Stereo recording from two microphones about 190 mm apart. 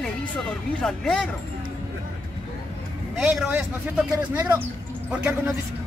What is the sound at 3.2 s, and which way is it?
Speech, 10° right (ahead or behind).